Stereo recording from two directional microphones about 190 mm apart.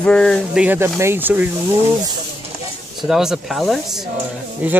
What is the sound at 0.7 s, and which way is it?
Speech, 15° right (ahead or behind).